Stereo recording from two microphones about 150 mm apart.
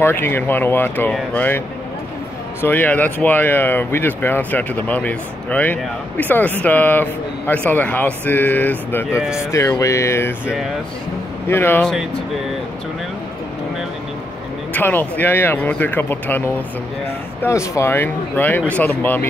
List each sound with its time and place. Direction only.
0.0 s speech: 15° left (ahead or behind)
2.6 s speech: 10° left (ahead or behind)
9.2 s speech: 5° right (ahead or behind)
9.5 s music: 20° left (ahead or behind)
11.4 s speech: 15° left (ahead or behind)
14.7 s speech: 10° left (ahead or behind)